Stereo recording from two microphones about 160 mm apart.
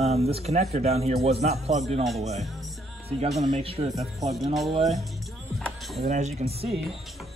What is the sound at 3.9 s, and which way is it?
Speech, centre (ahead or behind).